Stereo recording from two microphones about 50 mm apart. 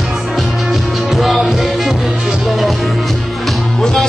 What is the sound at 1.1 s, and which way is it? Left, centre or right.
Music, centre.